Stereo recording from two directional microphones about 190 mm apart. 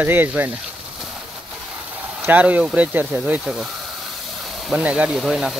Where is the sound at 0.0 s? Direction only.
10° right (ahead or behind).